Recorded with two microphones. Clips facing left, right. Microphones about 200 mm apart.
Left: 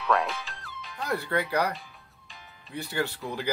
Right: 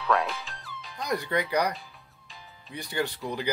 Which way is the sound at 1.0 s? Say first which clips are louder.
Even; 15° right (ahead or behind).